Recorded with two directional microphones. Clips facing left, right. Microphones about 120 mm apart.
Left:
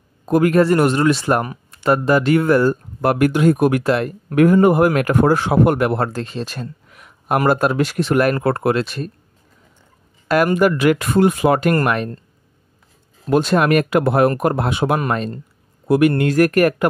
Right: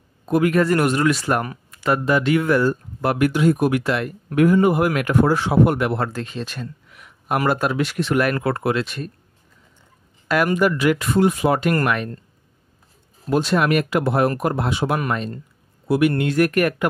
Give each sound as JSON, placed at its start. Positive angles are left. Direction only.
{"t": 0.3, "sound": "speech", "side_deg": 40}
{"t": 0.7, "sound": "speech", "side_deg": 30}
{"t": 4.4, "sound": "speech", "side_deg": 50}
{"t": 5.1, "sound": "speech", "side_deg": 50}
{"t": 10.2, "sound": "speech", "side_deg": 45}
{"t": 11.7, "sound": "speech", "side_deg": 35}
{"t": 13.3, "sound": "speech", "side_deg": 50}
{"t": 15.0, "sound": "speech", "side_deg": 40}